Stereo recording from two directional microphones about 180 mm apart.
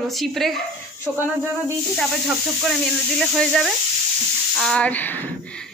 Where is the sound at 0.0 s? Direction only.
Centre (ahead or behind).